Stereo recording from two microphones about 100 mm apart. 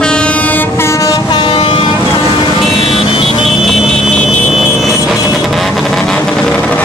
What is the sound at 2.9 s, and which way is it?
Vehicle, 65° left (ahead or behind).